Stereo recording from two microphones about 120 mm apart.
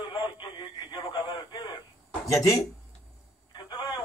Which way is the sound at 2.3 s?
30° left (ahead or behind).